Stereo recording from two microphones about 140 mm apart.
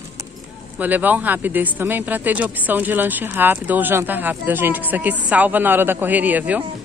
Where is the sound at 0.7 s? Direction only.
10° right (ahead or behind).